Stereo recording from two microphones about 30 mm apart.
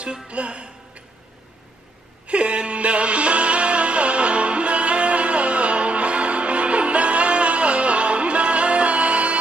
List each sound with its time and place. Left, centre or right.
0.3 s music: right
2.2 s music: right